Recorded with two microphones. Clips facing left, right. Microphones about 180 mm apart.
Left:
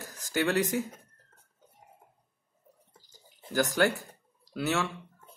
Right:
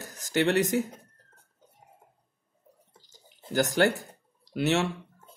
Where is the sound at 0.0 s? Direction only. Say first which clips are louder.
Right 4 dB; 20° right (ahead or behind).